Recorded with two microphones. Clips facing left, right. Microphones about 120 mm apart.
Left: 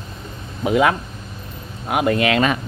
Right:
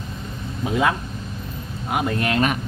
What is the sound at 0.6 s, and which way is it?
Speech, 65° left (ahead or behind).